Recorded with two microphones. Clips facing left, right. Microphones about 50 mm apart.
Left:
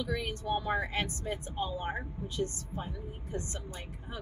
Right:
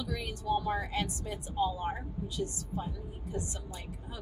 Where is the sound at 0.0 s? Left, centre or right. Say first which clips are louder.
Left 2 dB; left.